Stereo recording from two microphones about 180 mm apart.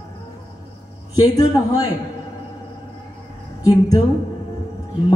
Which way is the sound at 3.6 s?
20° left (ahead or behind).